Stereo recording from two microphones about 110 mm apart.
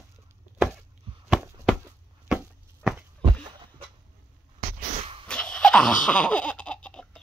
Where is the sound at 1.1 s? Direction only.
55° right (ahead or behind).